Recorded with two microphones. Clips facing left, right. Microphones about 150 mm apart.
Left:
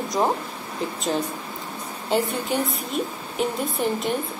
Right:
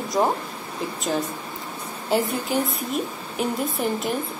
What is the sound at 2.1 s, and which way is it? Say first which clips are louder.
A woman's voice: right 1 dB; centre (ahead or behind).